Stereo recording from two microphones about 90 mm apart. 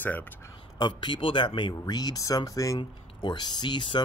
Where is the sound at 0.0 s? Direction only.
20° left (ahead or behind).